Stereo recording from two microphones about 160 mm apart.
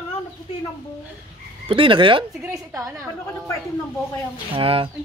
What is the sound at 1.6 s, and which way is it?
Speech, 35° right (ahead or behind).